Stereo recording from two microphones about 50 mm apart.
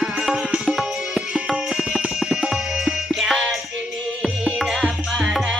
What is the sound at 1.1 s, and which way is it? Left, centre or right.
Music, right.